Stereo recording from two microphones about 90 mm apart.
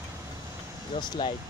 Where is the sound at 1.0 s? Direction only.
60° left (ahead or behind).